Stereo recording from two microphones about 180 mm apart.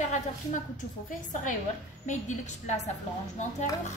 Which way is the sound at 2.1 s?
40° left (ahead or behind).